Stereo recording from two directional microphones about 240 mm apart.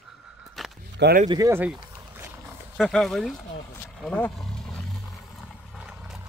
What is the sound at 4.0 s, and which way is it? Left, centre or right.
Roaring cats, centre.